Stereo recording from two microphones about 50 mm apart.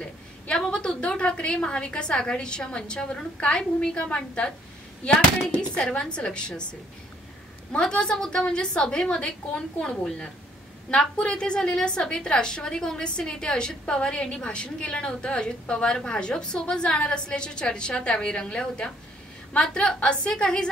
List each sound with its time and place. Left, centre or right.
0.0 s a sound: centre
0.8 s a woman's voice: centre
5.8 s a woman's voice: left
7.9 s a woman's voice: centre